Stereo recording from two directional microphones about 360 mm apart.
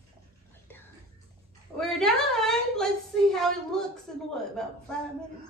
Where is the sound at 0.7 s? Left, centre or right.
Centre.